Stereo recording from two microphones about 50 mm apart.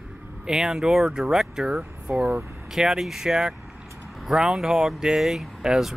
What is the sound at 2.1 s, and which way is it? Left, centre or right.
Speech, right.